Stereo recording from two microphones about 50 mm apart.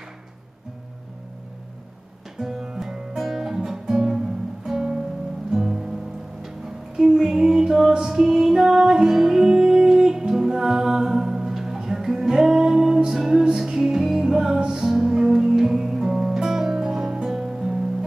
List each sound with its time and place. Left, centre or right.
2.3 s music: centre
7.0 s female singing: centre
8.0 s music: centre